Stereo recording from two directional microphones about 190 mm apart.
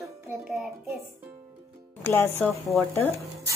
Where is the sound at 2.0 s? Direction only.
10° left (ahead or behind).